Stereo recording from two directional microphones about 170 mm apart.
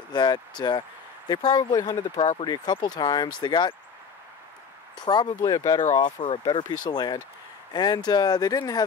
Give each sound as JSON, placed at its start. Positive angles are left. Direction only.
{"t": 0.1, "sound": "speech", "side_deg": 25}
{"t": 4.9, "sound": "speech", "side_deg": 25}